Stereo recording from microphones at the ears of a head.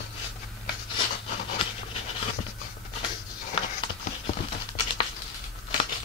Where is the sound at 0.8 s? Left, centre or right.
Left.